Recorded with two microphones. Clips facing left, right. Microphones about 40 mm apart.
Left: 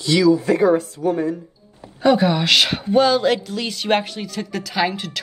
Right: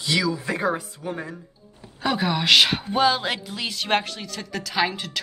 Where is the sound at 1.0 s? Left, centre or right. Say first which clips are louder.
Left 11 dB; centre.